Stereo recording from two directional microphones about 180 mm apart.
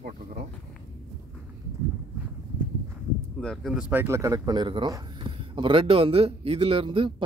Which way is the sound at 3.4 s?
Centre (ahead or behind).